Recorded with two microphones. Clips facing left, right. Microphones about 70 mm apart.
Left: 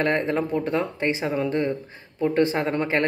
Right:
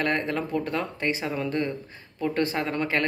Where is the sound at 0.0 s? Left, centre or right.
Left.